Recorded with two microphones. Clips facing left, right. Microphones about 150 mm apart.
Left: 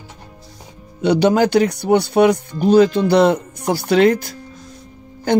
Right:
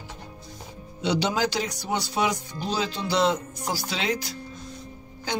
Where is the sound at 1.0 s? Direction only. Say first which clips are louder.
Left 10 dB; 55° left (ahead or behind).